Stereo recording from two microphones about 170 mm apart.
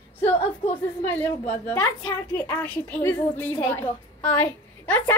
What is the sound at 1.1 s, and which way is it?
A woman's voice, 10° left (ahead or behind).